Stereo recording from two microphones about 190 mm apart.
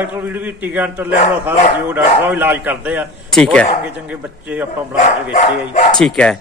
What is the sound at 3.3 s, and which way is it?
Speech, 5° left (ahead or behind).